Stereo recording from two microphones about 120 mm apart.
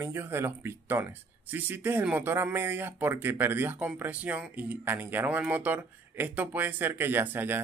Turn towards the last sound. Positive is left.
turn(degrees=-15)  # may be behind; listen again after turning